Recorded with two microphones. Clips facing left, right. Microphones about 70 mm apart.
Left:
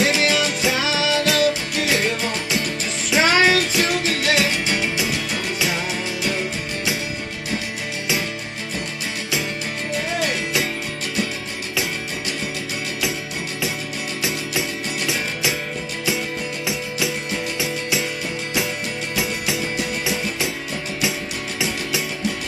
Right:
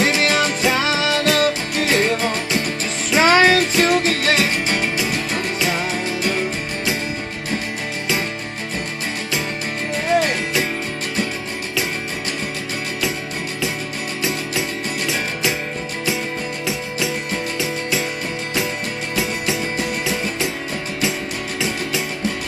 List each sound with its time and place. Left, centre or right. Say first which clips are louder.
0.0 s music: right 1 dB; right